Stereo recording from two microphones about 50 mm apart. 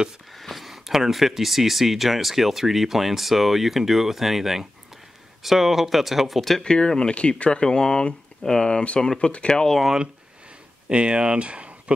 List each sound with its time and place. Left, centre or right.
0.4 s speech: centre
6.6 s speech: centre
10.9 s speech: right